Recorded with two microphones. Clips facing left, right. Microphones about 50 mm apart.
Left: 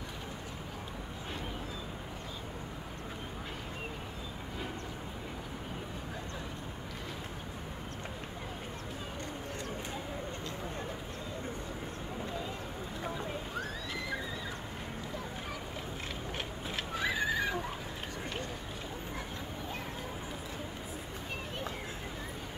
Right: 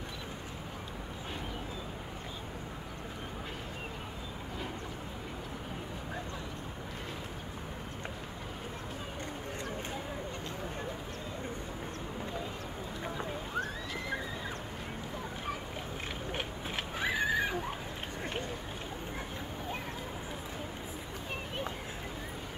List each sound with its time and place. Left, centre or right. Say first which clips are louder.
16.7 s horse: even; right